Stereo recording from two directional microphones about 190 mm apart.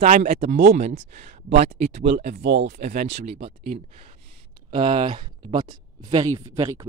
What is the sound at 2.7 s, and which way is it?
Speech, 45° right (ahead or behind).